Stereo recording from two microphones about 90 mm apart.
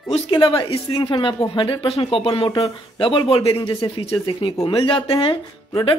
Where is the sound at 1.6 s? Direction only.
80° left.